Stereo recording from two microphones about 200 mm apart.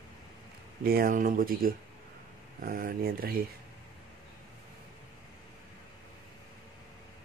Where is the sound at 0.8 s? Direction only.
45° right (ahead or behind).